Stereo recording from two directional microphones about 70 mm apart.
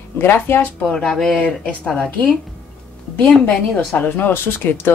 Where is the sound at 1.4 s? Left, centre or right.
Centre.